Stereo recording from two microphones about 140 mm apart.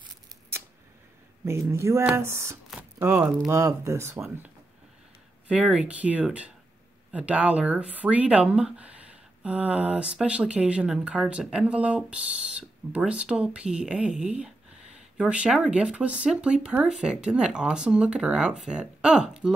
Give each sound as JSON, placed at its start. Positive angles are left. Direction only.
{"t": 1.4, "sound": "speech", "side_deg": -20}
{"t": 5.5, "sound": "speech", "side_deg": -10}